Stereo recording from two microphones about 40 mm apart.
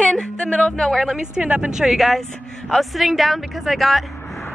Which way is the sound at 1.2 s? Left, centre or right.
Right.